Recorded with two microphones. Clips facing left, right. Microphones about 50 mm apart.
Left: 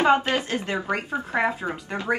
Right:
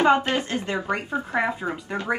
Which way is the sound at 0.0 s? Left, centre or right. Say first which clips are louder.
Even; centre.